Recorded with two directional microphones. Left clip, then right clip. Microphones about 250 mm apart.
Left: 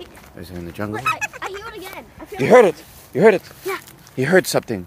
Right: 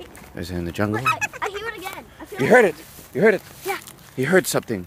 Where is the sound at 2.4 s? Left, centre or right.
Left.